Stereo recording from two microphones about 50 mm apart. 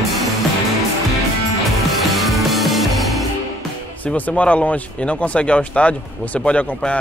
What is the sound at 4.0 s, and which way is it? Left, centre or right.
Speech, left.